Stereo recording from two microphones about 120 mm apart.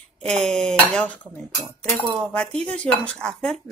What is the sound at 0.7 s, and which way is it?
Speech, 10° left (ahead or behind).